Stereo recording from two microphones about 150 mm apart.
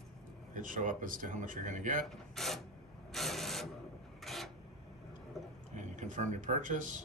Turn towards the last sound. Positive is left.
turn(degrees=-60)  # may be behind; listen again after turning